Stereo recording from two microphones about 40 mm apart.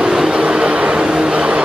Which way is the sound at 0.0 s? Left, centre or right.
Right.